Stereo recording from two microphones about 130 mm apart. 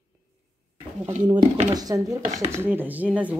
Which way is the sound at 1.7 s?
30° right (ahead or behind).